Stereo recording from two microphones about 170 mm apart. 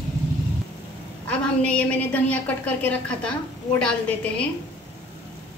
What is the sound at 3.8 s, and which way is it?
Speech, 5° left (ahead or behind).